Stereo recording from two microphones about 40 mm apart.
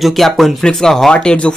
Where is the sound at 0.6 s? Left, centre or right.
Centre.